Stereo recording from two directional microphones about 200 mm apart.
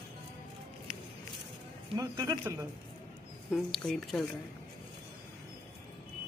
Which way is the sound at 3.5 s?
5° left (ahead or behind).